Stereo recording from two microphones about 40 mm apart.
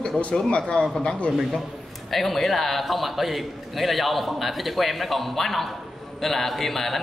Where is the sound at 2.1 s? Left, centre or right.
Centre.